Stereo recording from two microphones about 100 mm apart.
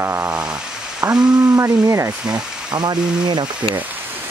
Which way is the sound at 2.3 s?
45° right (ahead or behind).